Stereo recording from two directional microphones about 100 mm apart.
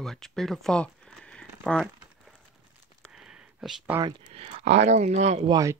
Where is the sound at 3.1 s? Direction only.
5° right (ahead or behind).